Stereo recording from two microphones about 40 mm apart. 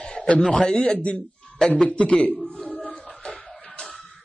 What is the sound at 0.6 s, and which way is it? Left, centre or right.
Speech, centre.